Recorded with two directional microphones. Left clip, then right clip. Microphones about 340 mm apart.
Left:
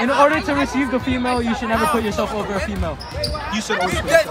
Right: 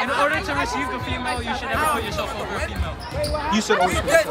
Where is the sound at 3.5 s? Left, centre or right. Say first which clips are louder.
Right 2 dB; centre.